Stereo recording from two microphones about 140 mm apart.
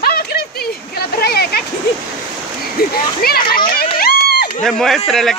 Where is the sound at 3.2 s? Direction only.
90° left.